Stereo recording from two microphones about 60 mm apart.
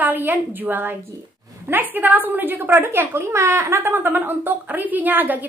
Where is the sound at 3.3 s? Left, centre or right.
Right.